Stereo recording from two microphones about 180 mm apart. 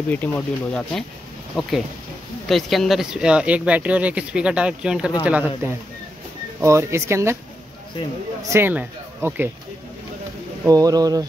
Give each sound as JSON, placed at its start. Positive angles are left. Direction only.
{"t": 0.1, "sound": "speech", "side_deg": 10}
{"t": 6.6, "sound": "speech", "side_deg": -15}
{"t": 8.4, "sound": "speech", "side_deg": -15}
{"t": 10.6, "sound": "speech", "side_deg": -20}